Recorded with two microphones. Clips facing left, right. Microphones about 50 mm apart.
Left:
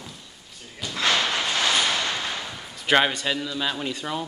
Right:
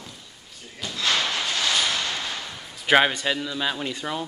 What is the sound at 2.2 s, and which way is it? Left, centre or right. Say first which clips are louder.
Whip: left 2 dB; centre.